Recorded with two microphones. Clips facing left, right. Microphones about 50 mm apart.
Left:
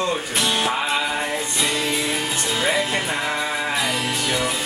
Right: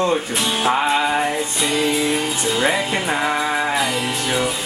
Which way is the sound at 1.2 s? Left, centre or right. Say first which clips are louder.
Right 3 dB; centre.